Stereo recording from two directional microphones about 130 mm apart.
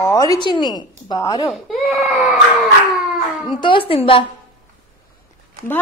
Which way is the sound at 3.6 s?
40° left (ahead or behind).